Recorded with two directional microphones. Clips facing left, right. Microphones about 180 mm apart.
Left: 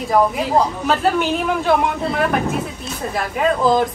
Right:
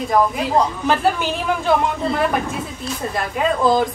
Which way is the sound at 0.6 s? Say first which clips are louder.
Right 2 dB; centre (ahead or behind).